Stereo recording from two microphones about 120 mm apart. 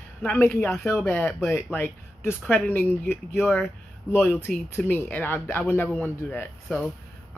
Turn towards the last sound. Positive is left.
turn(degrees=20)  # may be behind; listen again after turning